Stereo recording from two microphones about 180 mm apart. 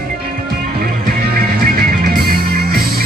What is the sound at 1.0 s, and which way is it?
Music, 50° right (ahead or behind).